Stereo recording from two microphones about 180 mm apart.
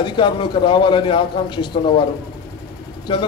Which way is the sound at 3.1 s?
30° left (ahead or behind).